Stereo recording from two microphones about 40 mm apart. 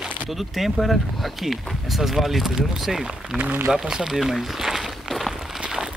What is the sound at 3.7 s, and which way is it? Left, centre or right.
Speech, centre.